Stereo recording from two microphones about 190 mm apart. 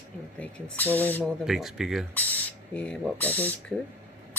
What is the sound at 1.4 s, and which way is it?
Speech, centre (ahead or behind).